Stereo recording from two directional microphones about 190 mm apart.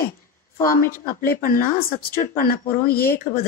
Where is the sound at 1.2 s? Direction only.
50° left (ahead or behind).